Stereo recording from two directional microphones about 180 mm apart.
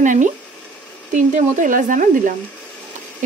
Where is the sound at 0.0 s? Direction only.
45° right (ahead or behind).